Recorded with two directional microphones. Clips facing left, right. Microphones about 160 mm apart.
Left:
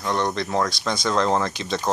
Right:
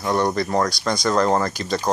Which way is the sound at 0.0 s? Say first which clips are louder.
Right 3 dB; 10° right (ahead or behind).